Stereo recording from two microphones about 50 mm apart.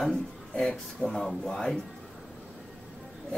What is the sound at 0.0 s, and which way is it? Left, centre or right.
Speech, centre.